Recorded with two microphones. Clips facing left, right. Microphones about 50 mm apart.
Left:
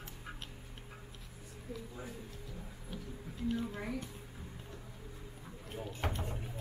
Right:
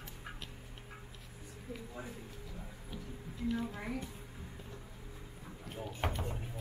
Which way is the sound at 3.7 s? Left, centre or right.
Centre.